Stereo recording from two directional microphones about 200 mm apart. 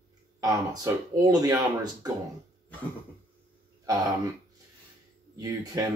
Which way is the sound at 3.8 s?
20° right (ahead or behind).